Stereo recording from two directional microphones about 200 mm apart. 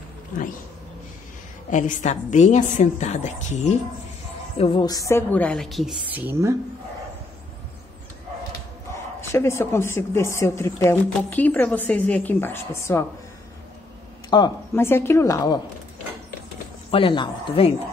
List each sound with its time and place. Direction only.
1.7 s a woman's voice: 40° left (ahead or behind)
4.6 s a woman's voice: 25° left (ahead or behind); by 6.5 s 10° right (ahead or behind)
8.9 s speech: 15° left (ahead or behind)
14.3 s speech: 15° left (ahead or behind)
16.9 s a woman's voice: 25° left (ahead or behind)